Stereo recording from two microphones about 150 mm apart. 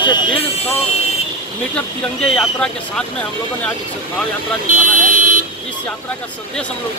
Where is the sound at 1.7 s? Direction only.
5° left (ahead or behind).